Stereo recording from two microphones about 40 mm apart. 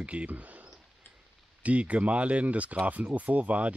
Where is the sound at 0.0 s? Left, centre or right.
Right.